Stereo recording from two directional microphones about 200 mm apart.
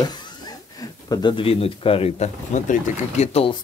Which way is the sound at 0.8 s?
20° left (ahead or behind).